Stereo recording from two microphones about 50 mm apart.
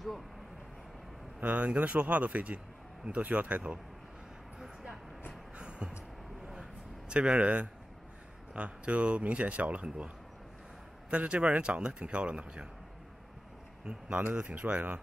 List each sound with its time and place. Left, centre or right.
1.4 s speech: right
5.6 s vehicle: right
6.5 s a sound: centre
8.5 s speech: right
13.8 s speech: right